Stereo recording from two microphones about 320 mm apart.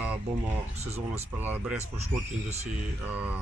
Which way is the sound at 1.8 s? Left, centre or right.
Centre.